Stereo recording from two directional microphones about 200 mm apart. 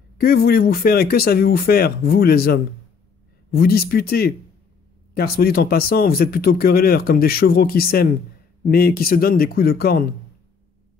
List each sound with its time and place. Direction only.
0.2 s speech: 50° left (ahead or behind)